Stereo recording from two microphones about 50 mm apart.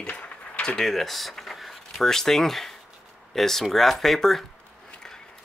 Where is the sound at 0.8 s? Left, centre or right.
Centre.